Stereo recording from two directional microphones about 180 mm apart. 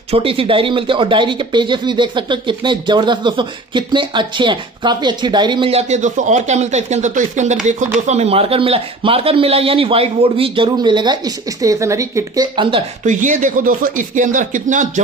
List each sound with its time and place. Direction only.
0.1 s speech: 30° right (ahead or behind)
13.0 s speech: 45° right (ahead or behind)